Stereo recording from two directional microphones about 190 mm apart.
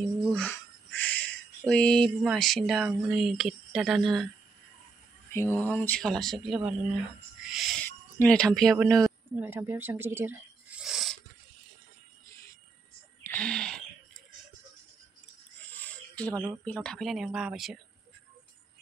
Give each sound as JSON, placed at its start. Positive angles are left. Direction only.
{"t": 0.3, "sound": "speech", "side_deg": 10}
{"t": 5.3, "sound": "speech", "side_deg": 10}
{"t": 10.8, "sound": "a sound", "side_deg": 0}
{"t": 13.2, "sound": "a sound", "side_deg": 5}
{"t": 16.3, "sound": "speech", "side_deg": -15}
{"t": 16.6, "sound": "speech", "side_deg": 5}